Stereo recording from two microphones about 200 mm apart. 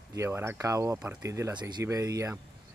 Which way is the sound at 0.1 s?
15° right (ahead or behind).